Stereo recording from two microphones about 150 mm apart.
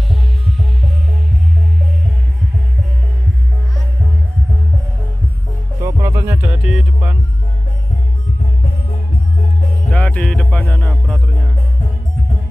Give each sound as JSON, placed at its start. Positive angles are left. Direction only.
{"t": 5.8, "sound": "music", "side_deg": -20}
{"t": 9.8, "sound": "music", "side_deg": 10}